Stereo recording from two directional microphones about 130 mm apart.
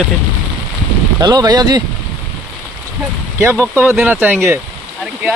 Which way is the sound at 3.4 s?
20° right (ahead or behind).